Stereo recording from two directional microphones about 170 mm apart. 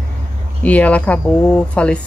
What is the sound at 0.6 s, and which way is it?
Speech, 10° left (ahead or behind).